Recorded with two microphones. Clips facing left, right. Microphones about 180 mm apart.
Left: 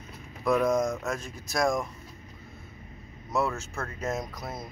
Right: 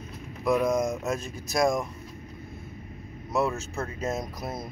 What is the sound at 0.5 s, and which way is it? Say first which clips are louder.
Speech: even; 15° right (ahead or behind).